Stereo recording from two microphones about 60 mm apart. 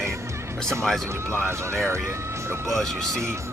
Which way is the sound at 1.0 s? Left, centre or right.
Right.